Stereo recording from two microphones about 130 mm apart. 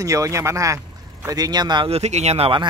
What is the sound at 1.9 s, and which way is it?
Speech, 55° right (ahead or behind).